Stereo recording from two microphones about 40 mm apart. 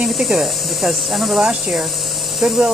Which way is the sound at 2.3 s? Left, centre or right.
Right.